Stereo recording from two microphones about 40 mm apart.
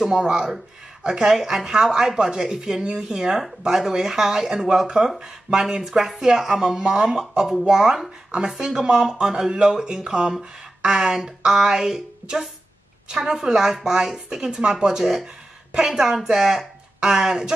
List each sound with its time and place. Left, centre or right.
0.0 s speech: centre